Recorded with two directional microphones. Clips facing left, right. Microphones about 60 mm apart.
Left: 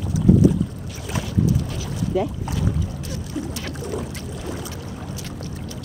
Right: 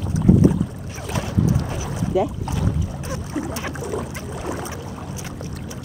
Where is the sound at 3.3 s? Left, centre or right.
Right.